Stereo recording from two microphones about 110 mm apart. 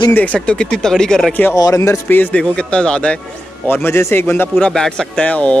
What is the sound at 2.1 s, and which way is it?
Speech, 15° left (ahead or behind).